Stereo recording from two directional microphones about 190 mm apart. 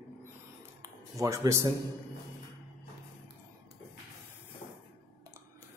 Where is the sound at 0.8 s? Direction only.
15° right (ahead or behind).